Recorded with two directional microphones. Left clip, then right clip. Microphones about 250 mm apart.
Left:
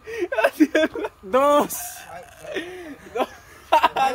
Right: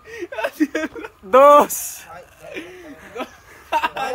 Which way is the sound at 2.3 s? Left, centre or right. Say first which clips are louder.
Left 4 dB; centre.